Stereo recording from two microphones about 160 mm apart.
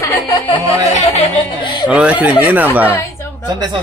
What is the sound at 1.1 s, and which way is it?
Speech, 40° left (ahead or behind).